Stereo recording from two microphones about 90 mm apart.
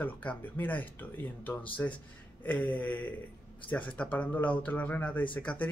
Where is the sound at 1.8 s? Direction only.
30° left (ahead or behind).